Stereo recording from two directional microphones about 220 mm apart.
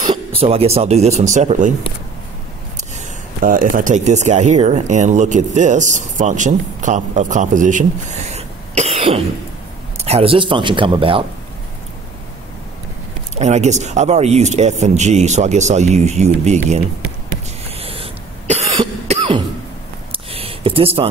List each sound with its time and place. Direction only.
0.1 s speech: 25° right (ahead or behind)
3.4 s speech: 40° right (ahead or behind)
13.3 s speech: 30° right (ahead or behind)
17.6 s cough: 25° right (ahead or behind)
20.1 s a sound: 25° right (ahead or behind)